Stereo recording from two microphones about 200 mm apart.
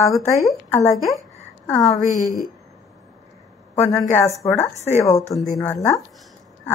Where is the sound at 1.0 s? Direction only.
Centre (ahead or behind).